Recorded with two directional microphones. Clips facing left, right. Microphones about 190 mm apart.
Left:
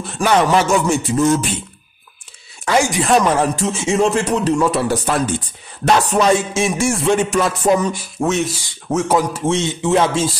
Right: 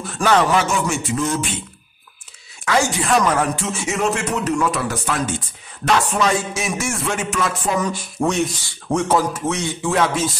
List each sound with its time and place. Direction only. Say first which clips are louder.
0.2 s speech: left 1 dB; 15° left (ahead or behind)
0.8 s music: left 6 dB; 35° left (ahead or behind)
2.7 s speech: left 3 dB; 15° left (ahead or behind)
3.0 s music: left 3 dB; 30° left (ahead or behind)
8.0 s speech: left 1 dB; 5° left (ahead or behind)
9.3 s speech: left 4 dB; 25° left (ahead or behind)